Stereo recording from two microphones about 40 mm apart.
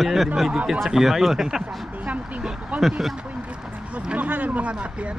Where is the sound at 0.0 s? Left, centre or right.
Centre.